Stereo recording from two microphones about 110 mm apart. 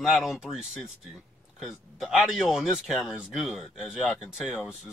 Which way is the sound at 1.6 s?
Centre (ahead or behind).